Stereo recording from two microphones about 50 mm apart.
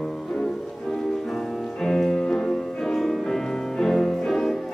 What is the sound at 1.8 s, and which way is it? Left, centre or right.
Music, centre.